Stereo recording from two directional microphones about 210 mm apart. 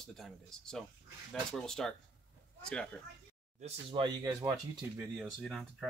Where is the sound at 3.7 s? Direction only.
20° right (ahead or behind).